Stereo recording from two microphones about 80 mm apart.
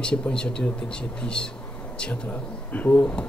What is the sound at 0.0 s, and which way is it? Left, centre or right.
Speech, centre.